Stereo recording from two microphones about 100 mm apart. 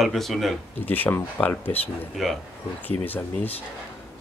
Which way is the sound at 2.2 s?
Centre (ahead or behind).